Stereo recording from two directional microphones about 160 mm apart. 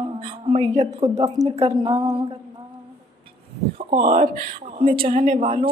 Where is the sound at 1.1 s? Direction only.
45° right (ahead or behind).